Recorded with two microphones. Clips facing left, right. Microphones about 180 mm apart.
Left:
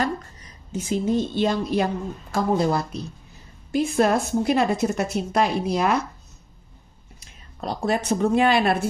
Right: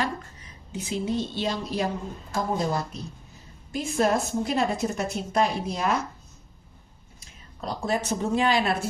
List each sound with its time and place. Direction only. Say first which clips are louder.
0.0 s a woman's voice: left 4 dB; 45° left (ahead or behind)
2.3 s a woman's voice: left 5 dB; 70° left (ahead or behind)
7.2 s speech: left 3 dB; 65° left (ahead or behind)